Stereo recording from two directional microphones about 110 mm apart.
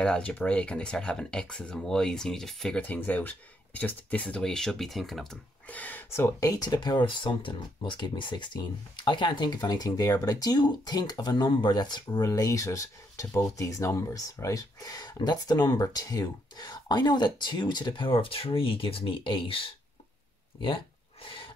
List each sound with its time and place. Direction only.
0.0 s speech: 10° left (ahead or behind)
2.8 s speech: 15° left (ahead or behind)
5.7 s speech: 15° left (ahead or behind); by 19.7 s 50° left (ahead or behind)
20.6 s a sound: 50° left (ahead or behind)